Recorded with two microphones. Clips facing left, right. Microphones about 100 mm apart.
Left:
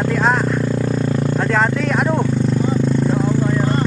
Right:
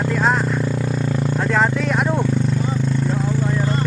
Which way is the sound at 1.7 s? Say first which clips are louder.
Left 2 dB; 15° right (ahead or behind).